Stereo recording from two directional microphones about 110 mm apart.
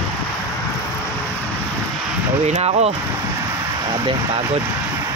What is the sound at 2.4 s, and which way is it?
Speech, 80° right.